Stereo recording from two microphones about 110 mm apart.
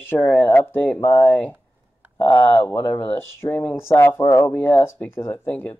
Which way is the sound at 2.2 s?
15° left (ahead or behind).